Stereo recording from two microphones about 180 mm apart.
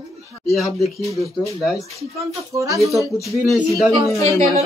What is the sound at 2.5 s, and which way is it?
Speech, 15° right (ahead or behind).